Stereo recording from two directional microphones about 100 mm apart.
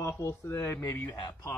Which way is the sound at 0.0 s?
25° left (ahead or behind).